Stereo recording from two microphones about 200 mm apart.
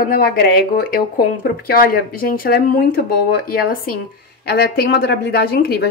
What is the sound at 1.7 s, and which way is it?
A woman's voice, 45° left (ahead or behind).